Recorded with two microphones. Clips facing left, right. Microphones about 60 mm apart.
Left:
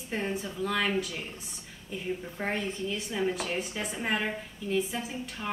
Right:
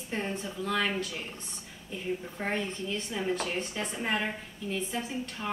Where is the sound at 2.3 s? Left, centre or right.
Centre.